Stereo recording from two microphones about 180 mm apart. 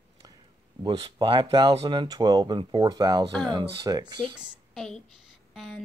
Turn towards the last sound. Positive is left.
turn(degrees=0)  # may be behind; listen again after turning